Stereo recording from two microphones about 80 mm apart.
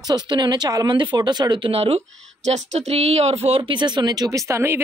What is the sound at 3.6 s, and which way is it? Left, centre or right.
Speech, right.